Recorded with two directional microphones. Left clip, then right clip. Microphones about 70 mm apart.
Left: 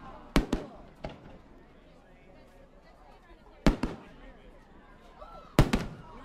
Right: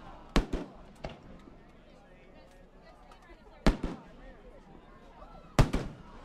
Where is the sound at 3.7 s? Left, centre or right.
Centre.